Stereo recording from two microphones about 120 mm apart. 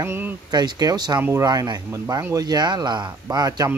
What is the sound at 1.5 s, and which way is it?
Speech, 35° right (ahead or behind).